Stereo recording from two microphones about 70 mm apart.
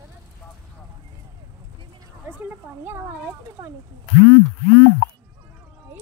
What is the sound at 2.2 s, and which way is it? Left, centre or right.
Speech, right.